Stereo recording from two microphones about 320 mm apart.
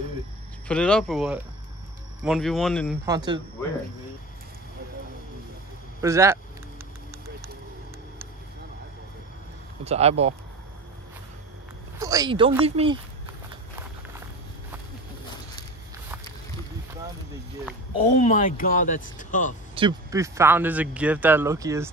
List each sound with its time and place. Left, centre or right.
0.7 s speech: centre
3.1 s speech: centre
5.9 s speech: centre
9.8 s speech: centre
12.0 s speech: centre
17.9 s speech: left
19.7 s speech: centre